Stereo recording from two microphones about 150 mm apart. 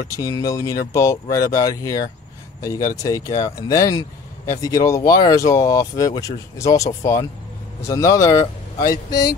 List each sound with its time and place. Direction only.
0.1 s speech: 25° left (ahead or behind)